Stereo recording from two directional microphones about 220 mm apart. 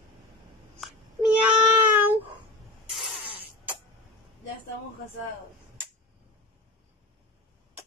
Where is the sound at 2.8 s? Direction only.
5° right (ahead or behind).